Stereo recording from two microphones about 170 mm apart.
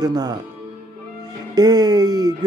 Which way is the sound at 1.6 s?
25° right (ahead or behind).